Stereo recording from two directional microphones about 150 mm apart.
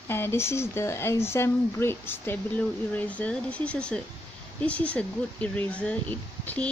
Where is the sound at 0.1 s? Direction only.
15° left (ahead or behind).